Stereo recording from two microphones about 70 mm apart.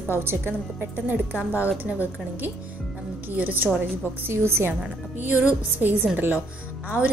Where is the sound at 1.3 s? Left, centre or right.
Left.